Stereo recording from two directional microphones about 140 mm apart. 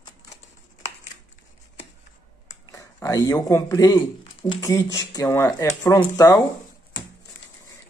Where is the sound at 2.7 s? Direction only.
25° left (ahead or behind).